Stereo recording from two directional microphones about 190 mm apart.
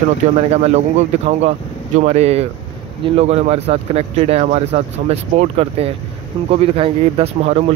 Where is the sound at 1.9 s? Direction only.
35° right (ahead or behind).